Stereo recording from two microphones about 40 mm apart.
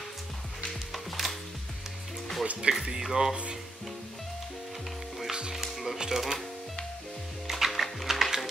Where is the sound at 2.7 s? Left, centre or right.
Right.